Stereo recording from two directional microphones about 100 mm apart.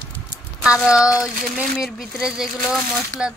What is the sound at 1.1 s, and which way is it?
Speech, 5° right (ahead or behind).